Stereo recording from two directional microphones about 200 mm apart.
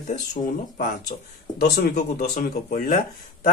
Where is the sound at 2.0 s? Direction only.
40° left (ahead or behind).